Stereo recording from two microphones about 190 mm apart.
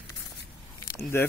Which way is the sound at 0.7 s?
15° left (ahead or behind).